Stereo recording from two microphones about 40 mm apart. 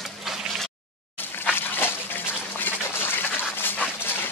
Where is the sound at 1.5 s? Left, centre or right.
Left.